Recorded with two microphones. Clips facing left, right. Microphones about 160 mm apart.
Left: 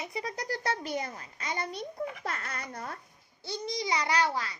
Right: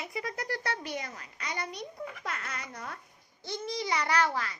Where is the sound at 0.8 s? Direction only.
30° left (ahead or behind).